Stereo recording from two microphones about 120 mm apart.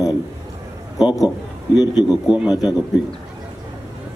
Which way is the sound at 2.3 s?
5° right (ahead or behind).